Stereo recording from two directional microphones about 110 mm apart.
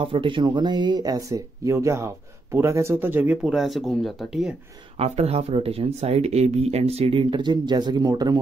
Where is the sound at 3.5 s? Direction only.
Centre (ahead or behind).